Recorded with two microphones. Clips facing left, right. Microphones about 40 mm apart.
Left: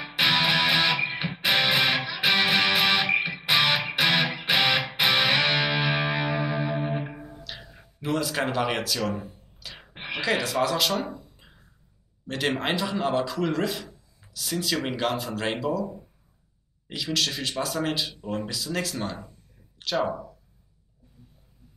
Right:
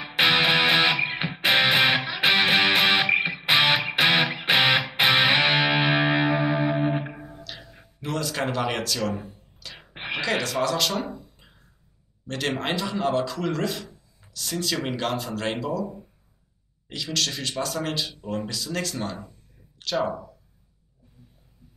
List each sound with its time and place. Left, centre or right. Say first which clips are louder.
0.1 s music: right 3 dB; centre
7.4 s a sound: even; centre
10.2 s speech: left 1 dB; centre